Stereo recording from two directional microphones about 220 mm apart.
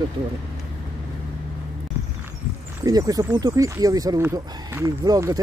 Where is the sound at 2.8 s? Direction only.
15° right (ahead or behind).